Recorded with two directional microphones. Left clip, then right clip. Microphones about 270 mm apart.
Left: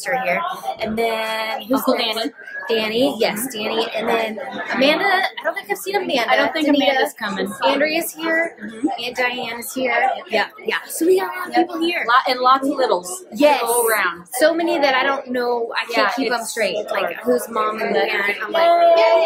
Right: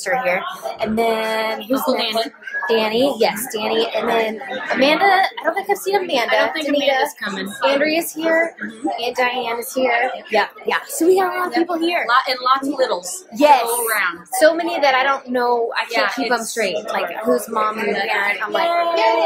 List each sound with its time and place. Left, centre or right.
0.0 s a woman's voice: centre
12.1 s a woman's voice: centre
13.4 s a woman's voice: centre
15.9 s a woman's voice: centre
16.3 s a woman's voice: centre
18.7 s a woman's voice: centre